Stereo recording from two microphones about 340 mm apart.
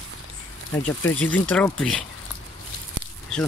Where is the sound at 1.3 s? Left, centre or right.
Centre.